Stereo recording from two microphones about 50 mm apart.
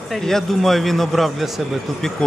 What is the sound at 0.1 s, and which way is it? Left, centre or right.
A man's voice, centre.